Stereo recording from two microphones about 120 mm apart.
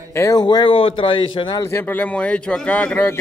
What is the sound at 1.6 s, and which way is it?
Speech, 20° left (ahead or behind).